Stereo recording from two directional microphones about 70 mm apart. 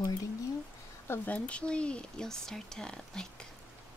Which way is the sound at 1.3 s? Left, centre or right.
Centre.